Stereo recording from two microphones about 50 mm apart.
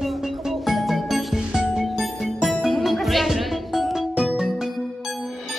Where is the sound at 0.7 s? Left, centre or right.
Centre.